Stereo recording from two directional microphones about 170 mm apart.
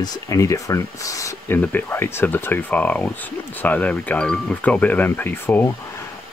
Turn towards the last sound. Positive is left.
turn(degrees=10)  # may be behind; listen again after turning